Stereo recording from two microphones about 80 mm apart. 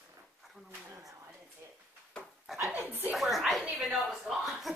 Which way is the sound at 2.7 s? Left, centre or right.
Right.